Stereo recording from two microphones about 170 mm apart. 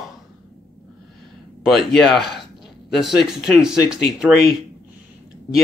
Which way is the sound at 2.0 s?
Centre (ahead or behind).